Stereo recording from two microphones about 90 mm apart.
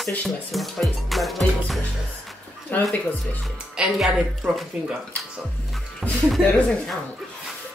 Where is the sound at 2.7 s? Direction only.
20° left (ahead or behind).